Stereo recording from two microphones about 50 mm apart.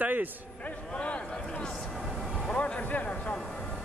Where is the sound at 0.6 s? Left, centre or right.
Left.